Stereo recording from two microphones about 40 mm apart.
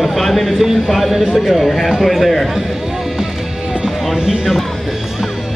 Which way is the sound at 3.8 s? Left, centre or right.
Centre.